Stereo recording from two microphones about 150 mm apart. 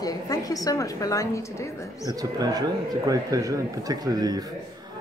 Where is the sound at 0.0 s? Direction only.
25° left (ahead or behind).